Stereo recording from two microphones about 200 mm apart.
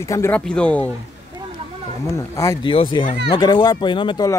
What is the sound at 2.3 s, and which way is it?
Speech, 20° left (ahead or behind).